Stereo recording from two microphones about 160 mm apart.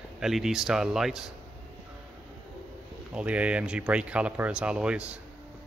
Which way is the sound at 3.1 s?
10° right (ahead or behind).